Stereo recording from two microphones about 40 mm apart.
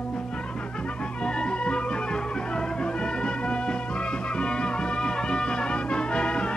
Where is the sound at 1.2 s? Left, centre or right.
Left.